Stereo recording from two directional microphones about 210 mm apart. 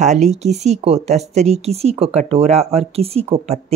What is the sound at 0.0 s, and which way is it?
Speech, 35° right (ahead or behind).